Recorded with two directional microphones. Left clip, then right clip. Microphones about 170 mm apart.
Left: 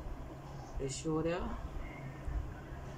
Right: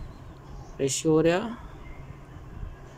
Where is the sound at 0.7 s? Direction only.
65° right (ahead or behind).